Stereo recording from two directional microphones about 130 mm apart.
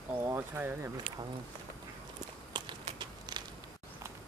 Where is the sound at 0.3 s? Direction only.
15° right (ahead or behind).